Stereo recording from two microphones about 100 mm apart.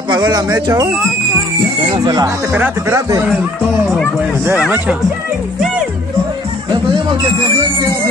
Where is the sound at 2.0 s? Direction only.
45° right (ahead or behind).